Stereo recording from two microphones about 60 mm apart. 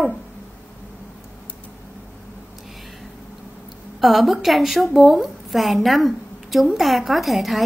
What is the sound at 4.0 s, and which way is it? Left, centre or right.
A woman's voice, centre.